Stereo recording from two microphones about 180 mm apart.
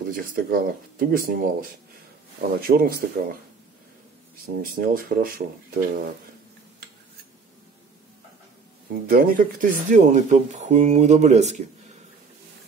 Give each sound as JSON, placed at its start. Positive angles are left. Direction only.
{"t": 0.0, "sound": "speech", "side_deg": -50}
{"t": 4.6, "sound": "speech", "side_deg": -55}
{"t": 9.1, "sound": "speech", "side_deg": -50}